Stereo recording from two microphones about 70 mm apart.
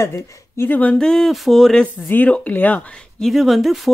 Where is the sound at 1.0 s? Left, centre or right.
Centre.